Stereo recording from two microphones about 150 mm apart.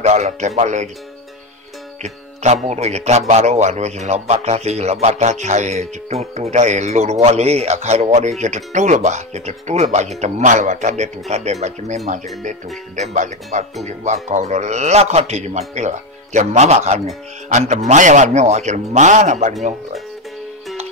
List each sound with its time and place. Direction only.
0.0 s a man's voice: 50° right (ahead or behind)
2.0 s a man's voice: 45° right (ahead or behind)
12.9 s a man's voice: 55° right (ahead or behind)